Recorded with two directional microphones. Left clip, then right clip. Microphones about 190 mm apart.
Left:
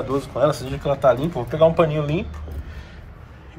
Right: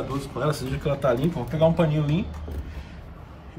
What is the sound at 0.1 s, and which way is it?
Speech, centre (ahead or behind).